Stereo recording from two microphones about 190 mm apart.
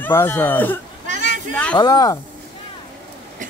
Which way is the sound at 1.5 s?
5° left (ahead or behind).